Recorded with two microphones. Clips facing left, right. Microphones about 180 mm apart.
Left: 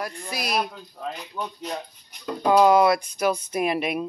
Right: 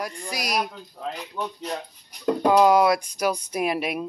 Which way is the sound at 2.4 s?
5° right (ahead or behind).